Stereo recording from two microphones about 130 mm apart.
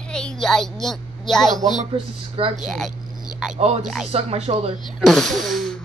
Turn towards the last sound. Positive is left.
turn(degrees=0)  # may be behind; listen again after turning